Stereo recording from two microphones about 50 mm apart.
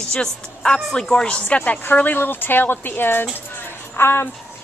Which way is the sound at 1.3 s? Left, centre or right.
Left.